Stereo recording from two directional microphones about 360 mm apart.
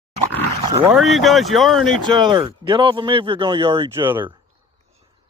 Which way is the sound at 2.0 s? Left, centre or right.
Centre.